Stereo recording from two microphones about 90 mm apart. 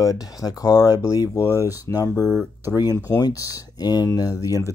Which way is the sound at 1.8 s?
40° left (ahead or behind).